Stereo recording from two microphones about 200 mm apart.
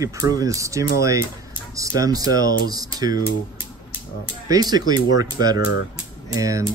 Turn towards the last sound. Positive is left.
turn(degrees=-15)  # may be behind; listen again after turning